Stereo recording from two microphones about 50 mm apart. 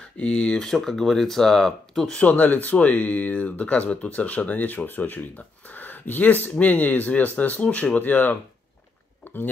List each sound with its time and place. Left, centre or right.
0.2 s speech: left
0.7 s speech: centre
2.1 s speech: left
5.7 s a sound: left
6.6 s speech: left